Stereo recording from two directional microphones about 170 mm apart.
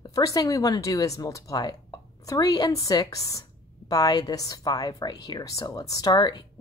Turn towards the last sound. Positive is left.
turn(degrees=25)  # may be behind; listen again after turning